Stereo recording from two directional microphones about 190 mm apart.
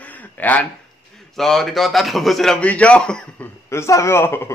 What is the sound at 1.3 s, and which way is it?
Speech, centre (ahead or behind).